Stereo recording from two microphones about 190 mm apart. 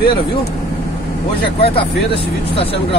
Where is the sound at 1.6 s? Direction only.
30° left (ahead or behind).